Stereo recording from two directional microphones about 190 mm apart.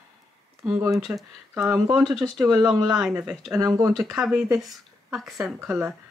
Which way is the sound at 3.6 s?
20° right (ahead or behind).